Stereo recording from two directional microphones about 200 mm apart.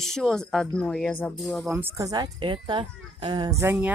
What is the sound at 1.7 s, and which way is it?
Speech, 15° right (ahead or behind).